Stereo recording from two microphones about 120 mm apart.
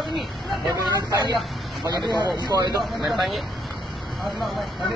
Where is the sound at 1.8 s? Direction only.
35° right (ahead or behind).